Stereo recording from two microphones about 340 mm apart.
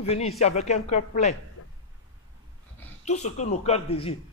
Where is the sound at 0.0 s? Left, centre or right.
Centre.